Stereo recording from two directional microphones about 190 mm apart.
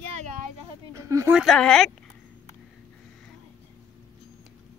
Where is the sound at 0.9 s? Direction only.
15° right (ahead or behind).